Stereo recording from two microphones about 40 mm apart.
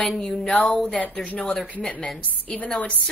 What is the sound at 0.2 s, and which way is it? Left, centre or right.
Speech, centre.